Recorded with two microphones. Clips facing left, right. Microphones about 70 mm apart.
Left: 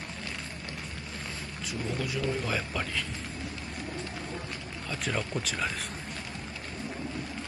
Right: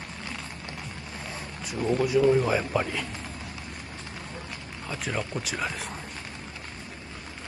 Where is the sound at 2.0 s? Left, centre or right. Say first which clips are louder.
Right 12 dB; right.